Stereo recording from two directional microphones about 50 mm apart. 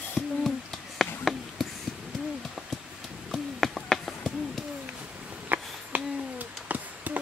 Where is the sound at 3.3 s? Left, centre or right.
Centre.